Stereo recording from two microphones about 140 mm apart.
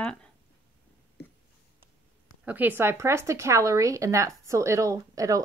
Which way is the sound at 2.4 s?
10° right (ahead or behind).